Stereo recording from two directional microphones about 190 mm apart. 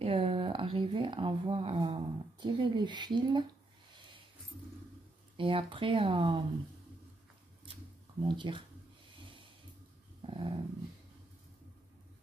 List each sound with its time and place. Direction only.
0.0 s speech: 30° right (ahead or behind)
5.4 s speech: 25° right (ahead or behind)
8.2 s speech: 25° right (ahead or behind)
10.2 s dog: 30° right (ahead or behind)